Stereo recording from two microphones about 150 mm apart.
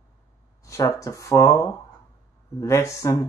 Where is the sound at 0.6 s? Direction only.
20° left (ahead or behind).